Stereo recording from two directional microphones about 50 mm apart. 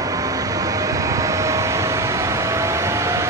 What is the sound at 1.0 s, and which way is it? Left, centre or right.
Vehicle, right.